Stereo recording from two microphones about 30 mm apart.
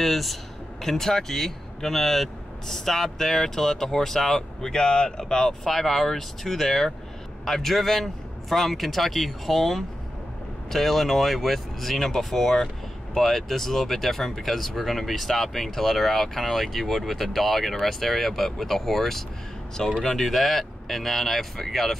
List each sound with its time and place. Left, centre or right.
0.0 s speech: centre
4.6 s speech: left
5.6 s speech: centre